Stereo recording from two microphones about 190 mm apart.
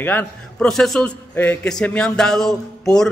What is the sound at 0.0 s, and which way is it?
A man's voice, 10° left (ahead or behind).